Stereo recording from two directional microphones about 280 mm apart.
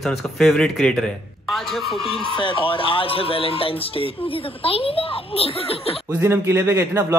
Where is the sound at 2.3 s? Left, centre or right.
Centre.